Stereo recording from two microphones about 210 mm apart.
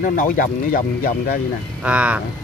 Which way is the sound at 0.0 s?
40° left (ahead or behind).